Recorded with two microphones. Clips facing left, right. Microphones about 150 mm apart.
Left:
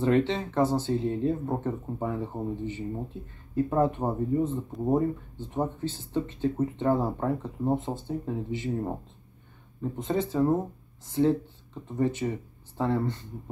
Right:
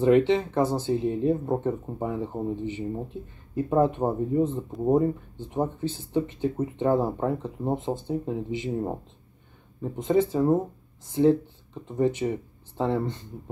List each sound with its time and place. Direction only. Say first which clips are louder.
0.0 s speech: right 5 dB; 15° right (ahead or behind)
4.7 s speech: right 3 dB; centre (ahead or behind)
5.5 s speech: right 2 dB; 15° right (ahead or behind)